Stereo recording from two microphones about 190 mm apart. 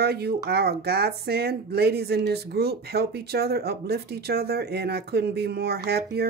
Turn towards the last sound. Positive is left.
turn(degrees=-55)  # may be behind; listen again after turning